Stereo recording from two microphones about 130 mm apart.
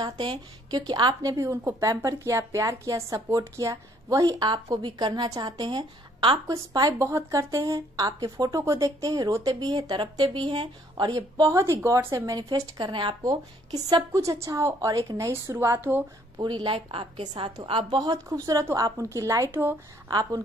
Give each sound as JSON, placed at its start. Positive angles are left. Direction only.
{"t": 0.0, "sound": "a woman's voice", "side_deg": -35}
{"t": 6.4, "sound": "speech", "side_deg": -25}
{"t": 14.1, "sound": "speech", "side_deg": -25}
{"t": 16.3, "sound": "a woman's voice", "side_deg": -35}
{"t": 20.1, "sound": "a woman's voice", "side_deg": -30}